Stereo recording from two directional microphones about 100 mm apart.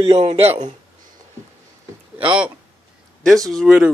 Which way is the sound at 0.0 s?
60° right (ahead or behind).